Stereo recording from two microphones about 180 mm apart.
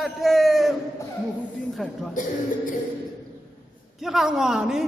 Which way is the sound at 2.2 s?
45° left (ahead or behind).